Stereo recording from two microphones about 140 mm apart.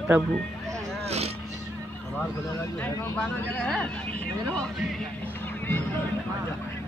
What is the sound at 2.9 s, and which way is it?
Speech, 15° left (ahead or behind).